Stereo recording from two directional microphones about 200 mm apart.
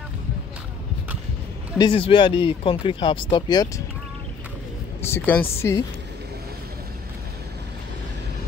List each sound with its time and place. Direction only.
1.8 s speech: 25° left (ahead or behind)
5.0 s speech: 10° left (ahead or behind)